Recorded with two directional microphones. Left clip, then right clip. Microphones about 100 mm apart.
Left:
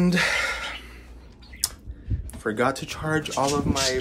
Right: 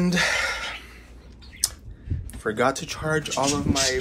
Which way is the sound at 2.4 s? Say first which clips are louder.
Right 1 dB; 25° left (ahead or behind).